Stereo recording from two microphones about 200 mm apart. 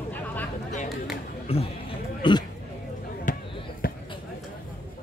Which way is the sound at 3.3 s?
40° left (ahead or behind).